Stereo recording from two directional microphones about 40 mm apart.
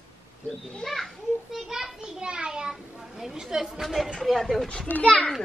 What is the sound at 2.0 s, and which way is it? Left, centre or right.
A child's voice, right.